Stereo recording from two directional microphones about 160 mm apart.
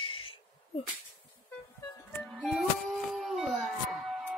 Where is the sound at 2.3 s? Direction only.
Centre (ahead or behind).